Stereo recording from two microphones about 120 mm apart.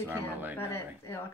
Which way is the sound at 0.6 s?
20° left (ahead or behind).